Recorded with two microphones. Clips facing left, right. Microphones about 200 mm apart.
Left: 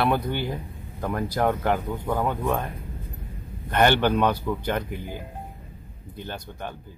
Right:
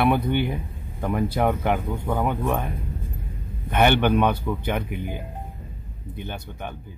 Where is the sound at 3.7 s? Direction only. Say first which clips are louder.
Right 1 dB; 10° right (ahead or behind).